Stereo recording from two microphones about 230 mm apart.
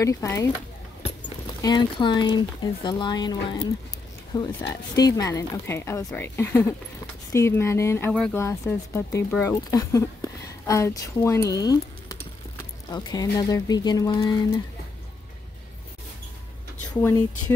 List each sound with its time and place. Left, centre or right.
0.0 s speech: centre
1.6 s speech: centre
16.9 s speech: centre